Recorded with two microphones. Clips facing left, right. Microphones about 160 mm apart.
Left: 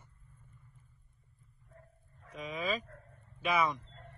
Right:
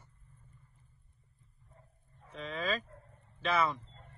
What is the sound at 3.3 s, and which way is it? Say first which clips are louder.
Speech: even; 15° left (ahead or behind).